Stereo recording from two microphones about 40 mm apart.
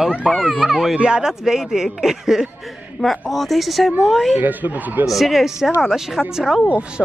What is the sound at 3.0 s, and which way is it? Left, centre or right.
Speech, centre.